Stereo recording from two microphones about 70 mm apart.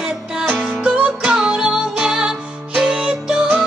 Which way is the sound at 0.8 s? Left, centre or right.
Centre.